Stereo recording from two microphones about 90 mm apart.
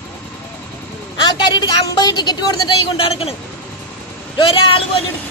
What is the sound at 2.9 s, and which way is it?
Speech, 90° left.